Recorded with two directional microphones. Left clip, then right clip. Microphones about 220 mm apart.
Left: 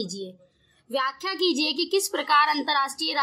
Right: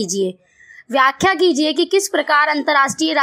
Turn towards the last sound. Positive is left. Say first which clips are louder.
# right 9 dB
turn(degrees=-25)  # may be behind; listen again after turning